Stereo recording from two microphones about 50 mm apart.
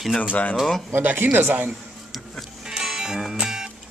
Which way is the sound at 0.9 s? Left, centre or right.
Right.